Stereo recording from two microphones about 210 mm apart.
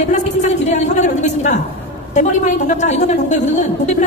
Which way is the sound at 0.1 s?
35° left (ahead or behind).